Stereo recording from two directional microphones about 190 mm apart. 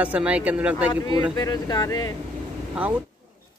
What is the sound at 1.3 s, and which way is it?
Speech, 20° left (ahead or behind).